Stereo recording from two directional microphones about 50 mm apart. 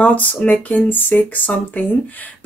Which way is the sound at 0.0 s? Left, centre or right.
Left.